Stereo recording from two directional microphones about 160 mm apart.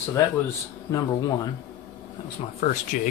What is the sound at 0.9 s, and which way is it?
Speech, 25° left (ahead or behind).